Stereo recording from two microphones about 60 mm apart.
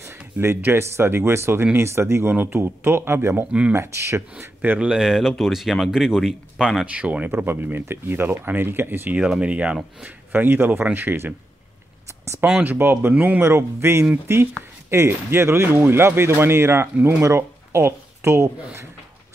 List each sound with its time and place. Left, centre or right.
0.4 s speech: right
4.7 s speech: centre
6.9 s speech: right
9.1 s speech: centre
10.0 s speech: right
12.5 s speech: right
13.4 s speech: right